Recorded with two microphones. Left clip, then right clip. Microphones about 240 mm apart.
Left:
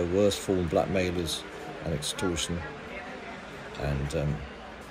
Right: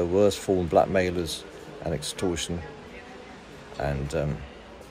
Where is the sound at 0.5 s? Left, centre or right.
Right.